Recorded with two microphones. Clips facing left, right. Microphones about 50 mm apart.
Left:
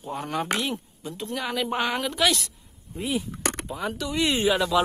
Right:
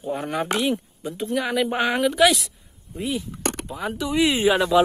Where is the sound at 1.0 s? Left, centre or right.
Centre.